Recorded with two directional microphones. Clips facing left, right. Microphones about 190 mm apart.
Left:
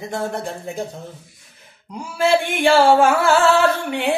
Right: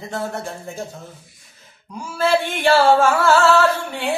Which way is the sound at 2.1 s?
10° left (ahead or behind).